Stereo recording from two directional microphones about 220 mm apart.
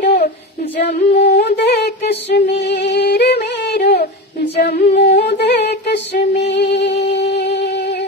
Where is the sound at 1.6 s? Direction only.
50° left (ahead or behind).